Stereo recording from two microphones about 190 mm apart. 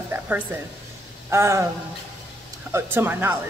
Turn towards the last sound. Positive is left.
turn(degrees=-10)  # may be behind; listen again after turning